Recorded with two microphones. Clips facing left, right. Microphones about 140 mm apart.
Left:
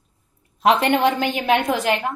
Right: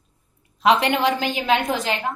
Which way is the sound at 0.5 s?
50° left (ahead or behind).